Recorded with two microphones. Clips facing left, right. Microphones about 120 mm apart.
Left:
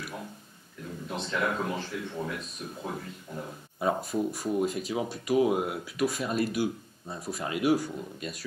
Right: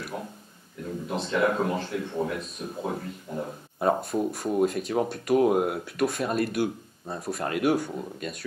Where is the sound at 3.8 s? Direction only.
50° right (ahead or behind).